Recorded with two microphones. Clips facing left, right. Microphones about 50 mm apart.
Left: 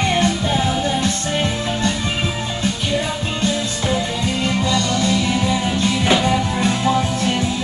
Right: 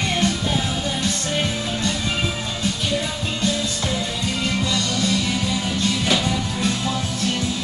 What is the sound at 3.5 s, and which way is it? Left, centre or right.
Music, centre.